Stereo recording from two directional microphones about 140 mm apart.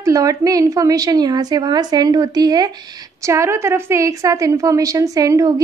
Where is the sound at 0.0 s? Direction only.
25° right (ahead or behind).